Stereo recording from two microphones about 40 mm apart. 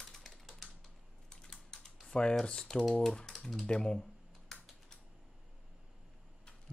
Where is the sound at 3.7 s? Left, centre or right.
Left.